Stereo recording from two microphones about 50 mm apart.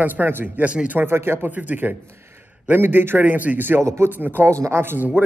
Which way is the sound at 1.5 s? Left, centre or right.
Right.